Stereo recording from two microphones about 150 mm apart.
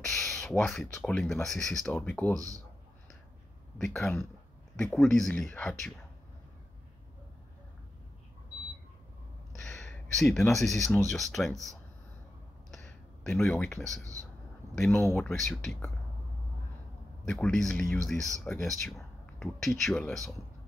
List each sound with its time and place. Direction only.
0.0 s a sound: 5° left (ahead or behind)
0.9 s speech: 5° left (ahead or behind)
2.3 s speech: 25° right (ahead or behind)
3.7 s speech: centre (ahead or behind)
9.6 s a sound: 5° left (ahead or behind)
10.5 s speech: centre (ahead or behind)
12.7 s a sound: centre (ahead or behind)
13.3 s speech: 10° left (ahead or behind)
15.1 s speech: centre (ahead or behind)
17.2 s speech: 5° left (ahead or behind)